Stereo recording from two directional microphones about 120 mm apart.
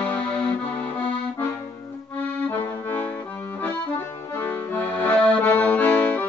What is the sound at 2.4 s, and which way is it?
Accordion, 15° left (ahead or behind).